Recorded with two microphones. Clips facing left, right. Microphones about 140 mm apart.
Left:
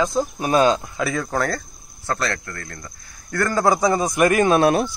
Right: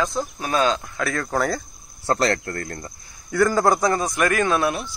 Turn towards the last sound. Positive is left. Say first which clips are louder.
# left 7 dB
turn(degrees=60)  # may be behind; listen again after turning